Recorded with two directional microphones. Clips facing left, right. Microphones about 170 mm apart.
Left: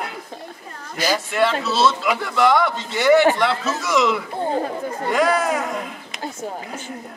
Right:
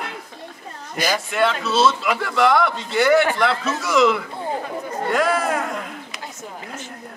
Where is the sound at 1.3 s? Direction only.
Centre (ahead or behind).